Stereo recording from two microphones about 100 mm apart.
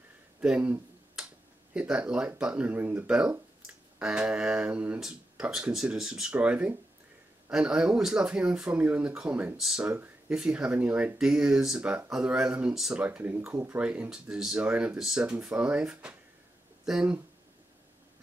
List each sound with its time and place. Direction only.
0.4 s speech: 10° right (ahead or behind)
9.8 s speech: 15° right (ahead or behind)
13.0 s speech: 15° right (ahead or behind)